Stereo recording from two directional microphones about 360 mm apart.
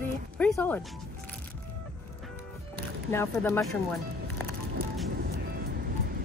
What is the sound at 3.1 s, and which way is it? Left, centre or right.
Speech, centre.